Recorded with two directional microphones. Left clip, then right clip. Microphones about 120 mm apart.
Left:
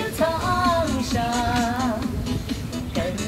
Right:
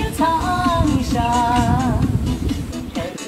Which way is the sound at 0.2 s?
40° left (ahead or behind).